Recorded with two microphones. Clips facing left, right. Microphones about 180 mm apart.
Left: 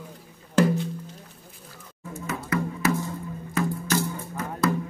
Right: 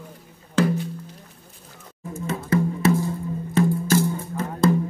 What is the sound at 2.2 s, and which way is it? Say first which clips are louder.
Music: right 5 dB; 25° right (ahead or behind).